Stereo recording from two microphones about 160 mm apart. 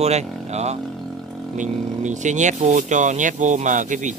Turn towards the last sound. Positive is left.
turn(degrees=-50)  # may be behind; listen again after turning